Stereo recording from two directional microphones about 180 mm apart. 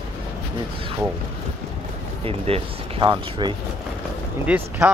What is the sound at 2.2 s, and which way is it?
Speech, 30° right (ahead or behind).